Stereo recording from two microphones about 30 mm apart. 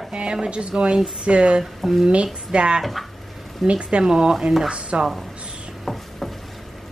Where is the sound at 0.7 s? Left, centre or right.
Right.